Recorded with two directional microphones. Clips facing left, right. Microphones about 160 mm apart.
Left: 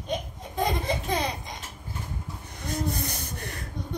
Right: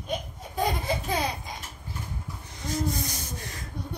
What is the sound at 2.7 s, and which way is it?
Rub, 60° left (ahead or behind).